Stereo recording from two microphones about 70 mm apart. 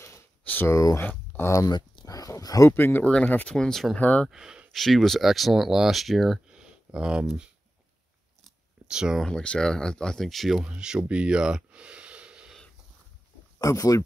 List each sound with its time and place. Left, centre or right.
0.4 s a sound: left
1.4 s speech: left
1.7 s a sound: left
2.7 s speech: left
3.4 s speech: centre
3.9 s speech: centre
4.3 s speech: centre
4.7 s speech: centre
6.5 s a sound: centre
8.8 s speech: centre
9.2 s speech: centre
10.6 s speech: centre
13.6 s speech: left